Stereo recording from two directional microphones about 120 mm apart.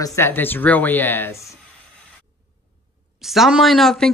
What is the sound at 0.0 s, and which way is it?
Speech, 20° left (ahead or behind).